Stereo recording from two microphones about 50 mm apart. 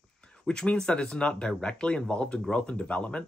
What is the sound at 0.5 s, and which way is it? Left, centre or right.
Speech, centre.